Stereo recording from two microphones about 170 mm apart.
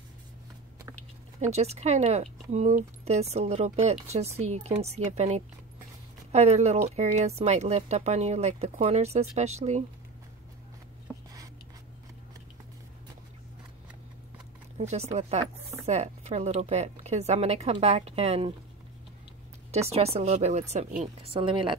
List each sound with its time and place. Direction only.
1.4 s speech: 40° right (ahead or behind)
14.8 s speech: 40° right (ahead or behind)
19.7 s speech: 35° right (ahead or behind)